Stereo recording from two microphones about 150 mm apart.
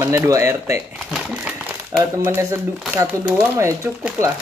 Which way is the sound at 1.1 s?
5° right (ahead or behind).